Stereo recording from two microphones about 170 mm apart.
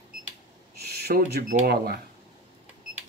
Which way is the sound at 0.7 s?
70° right (ahead or behind).